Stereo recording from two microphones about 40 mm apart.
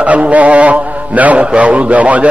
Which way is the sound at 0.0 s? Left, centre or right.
Right.